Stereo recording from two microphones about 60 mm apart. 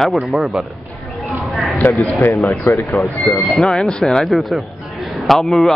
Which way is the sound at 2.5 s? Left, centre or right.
Left.